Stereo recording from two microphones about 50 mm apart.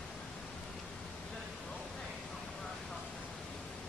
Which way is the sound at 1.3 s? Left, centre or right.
Centre.